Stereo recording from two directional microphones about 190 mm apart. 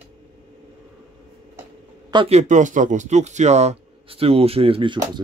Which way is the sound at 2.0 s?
30° right (ahead or behind).